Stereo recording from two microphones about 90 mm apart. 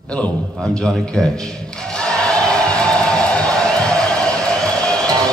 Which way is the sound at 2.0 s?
10° left (ahead or behind).